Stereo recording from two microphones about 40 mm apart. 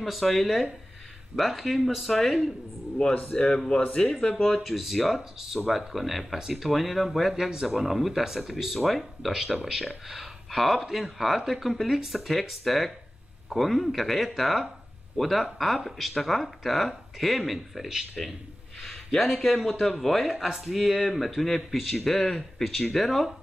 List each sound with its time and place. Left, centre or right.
0.0 s speech: centre
3.3 s speech: centre
4.5 s speech: centre
9.3 s speech: centre
12.2 s speech: centre